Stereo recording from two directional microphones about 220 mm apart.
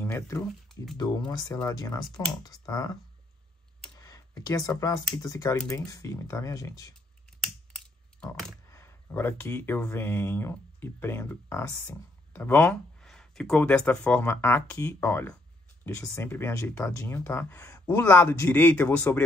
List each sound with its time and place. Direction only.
0.0 s speech: 10° left (ahead or behind)
4.0 s speech: 15° left (ahead or behind)
7.4 s computer keyboard: 5° left (ahead or behind)
8.6 s speech: 10° left (ahead or behind)